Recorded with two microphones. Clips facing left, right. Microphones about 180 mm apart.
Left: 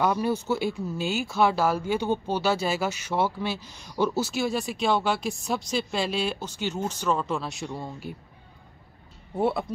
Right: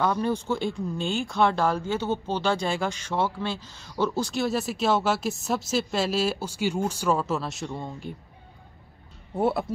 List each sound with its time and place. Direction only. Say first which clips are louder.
0.0 s speech: even; 10° left (ahead or behind)
9.4 s speech: right 1 dB; centre (ahead or behind)